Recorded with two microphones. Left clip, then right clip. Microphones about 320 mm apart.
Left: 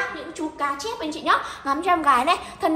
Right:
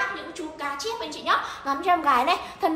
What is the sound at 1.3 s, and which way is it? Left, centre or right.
A woman's voice, left.